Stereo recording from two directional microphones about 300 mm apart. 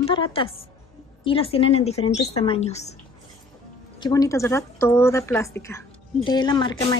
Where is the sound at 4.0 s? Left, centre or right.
Centre.